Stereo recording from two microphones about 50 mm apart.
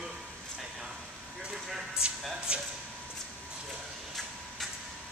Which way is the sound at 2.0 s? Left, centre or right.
Centre.